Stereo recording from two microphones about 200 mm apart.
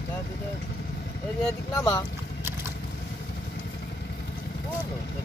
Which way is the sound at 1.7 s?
20° left (ahead or behind).